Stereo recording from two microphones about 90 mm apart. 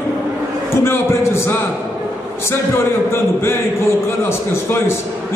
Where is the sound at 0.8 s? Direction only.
30° left (ahead or behind).